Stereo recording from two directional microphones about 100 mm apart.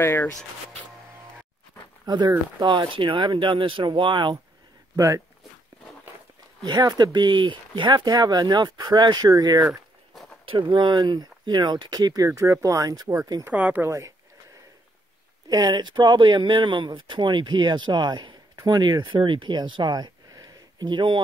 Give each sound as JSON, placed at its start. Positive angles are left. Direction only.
{"t": 0.0, "sound": "speech", "side_deg": 25}
{"t": 2.0, "sound": "speech", "side_deg": -45}
{"t": 4.9, "sound": "speech", "side_deg": -30}
{"t": 6.6, "sound": "speech", "side_deg": -45}
{"t": 9.7, "sound": "a sound", "side_deg": 0}
{"t": 10.4, "sound": "speech", "side_deg": -60}
{"t": 12.3, "sound": "speech", "side_deg": -25}
{"t": 13.5, "sound": "speech", "side_deg": -15}
{"t": 13.8, "sound": "speech", "side_deg": -30}
{"t": 15.4, "sound": "speech", "side_deg": -45}